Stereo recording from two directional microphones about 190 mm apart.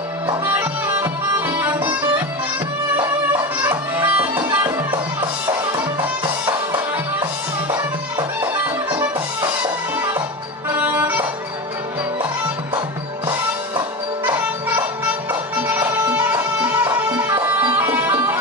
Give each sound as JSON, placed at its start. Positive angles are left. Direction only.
{"t": 0.5, "sound": "music", "side_deg": -10}
{"t": 3.3, "sound": "music", "side_deg": -10}
{"t": 5.9, "sound": "music", "side_deg": -25}
{"t": 7.7, "sound": "music", "side_deg": -15}
{"t": 10.7, "sound": "music", "side_deg": -10}
{"t": 15.6, "sound": "music", "side_deg": -10}